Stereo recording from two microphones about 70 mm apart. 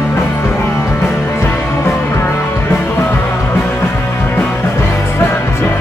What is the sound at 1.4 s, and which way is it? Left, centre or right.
Music, left.